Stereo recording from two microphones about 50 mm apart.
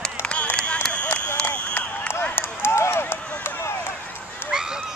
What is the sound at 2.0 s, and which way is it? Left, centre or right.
Run, left.